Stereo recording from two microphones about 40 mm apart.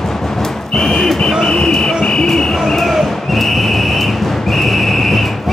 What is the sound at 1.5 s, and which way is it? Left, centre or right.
Buzzer, left.